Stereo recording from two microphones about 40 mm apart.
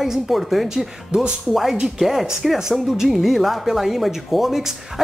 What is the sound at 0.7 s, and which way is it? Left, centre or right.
Speech, centre.